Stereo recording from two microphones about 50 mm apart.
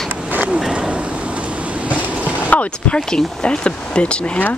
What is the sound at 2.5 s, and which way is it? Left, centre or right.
Speech, left.